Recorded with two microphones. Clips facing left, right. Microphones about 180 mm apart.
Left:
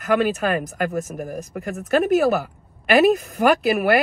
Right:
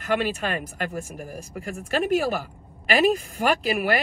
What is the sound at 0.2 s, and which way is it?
Speech, 45° left (ahead or behind).